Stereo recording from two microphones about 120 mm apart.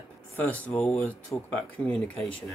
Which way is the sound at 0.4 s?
10° left (ahead or behind).